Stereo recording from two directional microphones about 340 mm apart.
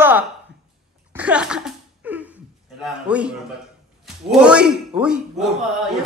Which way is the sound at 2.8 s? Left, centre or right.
Centre.